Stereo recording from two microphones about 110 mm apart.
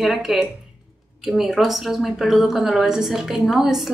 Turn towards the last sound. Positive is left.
turn(degrees=-5)  # may be behind; listen again after turning